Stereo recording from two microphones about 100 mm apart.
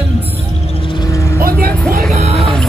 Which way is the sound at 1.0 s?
30° left (ahead or behind).